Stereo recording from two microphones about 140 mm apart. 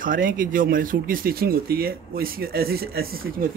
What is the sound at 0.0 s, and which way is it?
Speech, 75° right (ahead or behind).